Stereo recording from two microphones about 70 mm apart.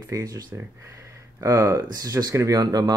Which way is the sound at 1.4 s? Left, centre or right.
Right.